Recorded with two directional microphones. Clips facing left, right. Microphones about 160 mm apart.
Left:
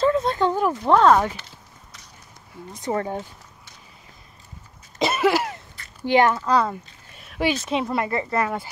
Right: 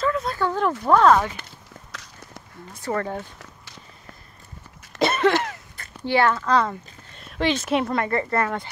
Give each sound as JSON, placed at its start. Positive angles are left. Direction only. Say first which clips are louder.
{"t": 0.0, "sound": "a sound", "louder": "left 4 dB", "side_deg": 25}
{"t": 0.8, "sound": "speech", "louder": "even", "side_deg": 25}
{"t": 1.9, "sound": "a sound", "louder": "right 5 dB", "side_deg": -90}
{"t": 2.7, "sound": "speech", "louder": "left 1 dB", "side_deg": 15}
{"t": 4.9, "sound": "cough", "louder": "even", "side_deg": 5}
{"t": 6.0, "sound": "a woman's voice", "louder": "left 2 dB", "side_deg": 15}